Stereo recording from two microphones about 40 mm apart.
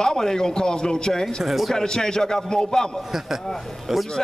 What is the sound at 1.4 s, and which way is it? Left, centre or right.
Speech, centre.